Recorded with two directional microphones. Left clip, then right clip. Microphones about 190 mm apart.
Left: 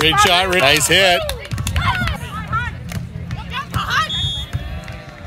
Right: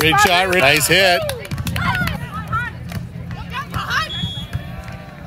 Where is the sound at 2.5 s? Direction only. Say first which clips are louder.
Even; 25° left (ahead or behind).